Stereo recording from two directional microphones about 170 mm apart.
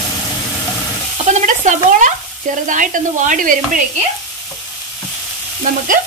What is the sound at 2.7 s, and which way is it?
Frying, 50° right (ahead or behind).